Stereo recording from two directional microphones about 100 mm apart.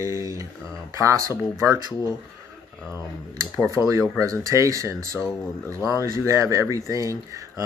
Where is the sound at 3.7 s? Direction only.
30° right (ahead or behind).